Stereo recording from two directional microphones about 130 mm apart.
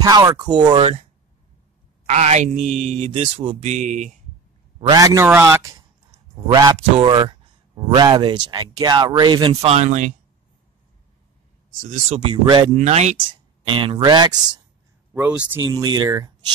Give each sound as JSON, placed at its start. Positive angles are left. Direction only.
{"t": 0.0, "sound": "speech", "side_deg": -30}
{"t": 2.0, "sound": "speech", "side_deg": -60}
{"t": 3.1, "sound": "speech", "side_deg": -50}
{"t": 3.7, "sound": "speech", "side_deg": -70}
{"t": 4.8, "sound": "speech", "side_deg": -30}
{"t": 6.3, "sound": "a man's voice", "side_deg": -35}
{"t": 11.8, "sound": "speech", "side_deg": -70}
{"t": 12.2, "sound": "speech", "side_deg": -40}
{"t": 12.7, "sound": "speech", "side_deg": -60}
{"t": 13.7, "sound": "speech", "side_deg": -45}
{"t": 15.1, "sound": "speech", "side_deg": -10}
{"t": 15.7, "sound": "speech", "side_deg": -35}